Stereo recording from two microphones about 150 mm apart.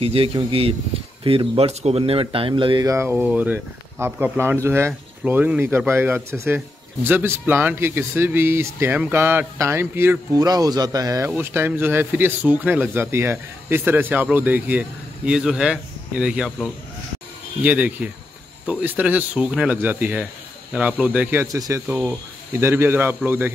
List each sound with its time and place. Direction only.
0.0 s speech: 40° right (ahead or behind)
2.9 s speech: 15° right (ahead or behind)